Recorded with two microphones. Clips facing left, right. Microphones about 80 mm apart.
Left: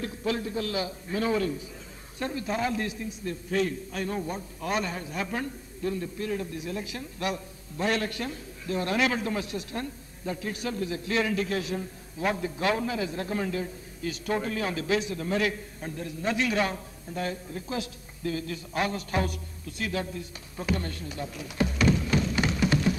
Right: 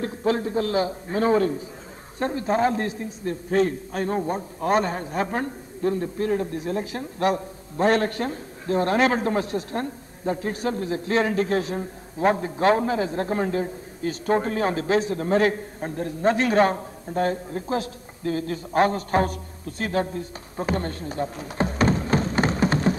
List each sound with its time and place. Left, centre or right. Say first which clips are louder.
0.0 s a man's voice: right 6 dB; right